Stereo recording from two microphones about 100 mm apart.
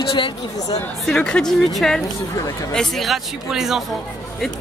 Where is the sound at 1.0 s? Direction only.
10° left (ahead or behind).